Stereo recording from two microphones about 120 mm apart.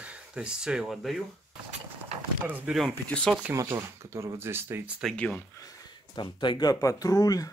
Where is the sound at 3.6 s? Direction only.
25° right (ahead or behind).